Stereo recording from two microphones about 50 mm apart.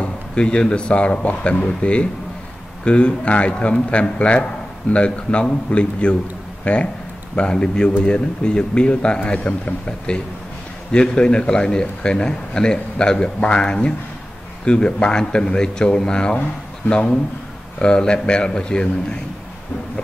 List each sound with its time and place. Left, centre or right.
0.0 s a man's voice: centre
9.2 s a man's voice: left